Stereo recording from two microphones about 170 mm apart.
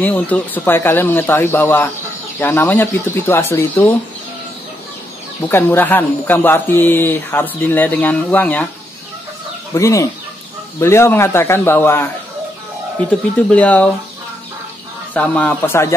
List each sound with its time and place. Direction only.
0.0 s speech: 10° left (ahead or behind)
5.5 s speech: 10° left (ahead or behind)
9.8 s speech: 20° left (ahead or behind)
13.5 s speech: 10° left (ahead or behind)
15.1 s speech: 5° left (ahead or behind)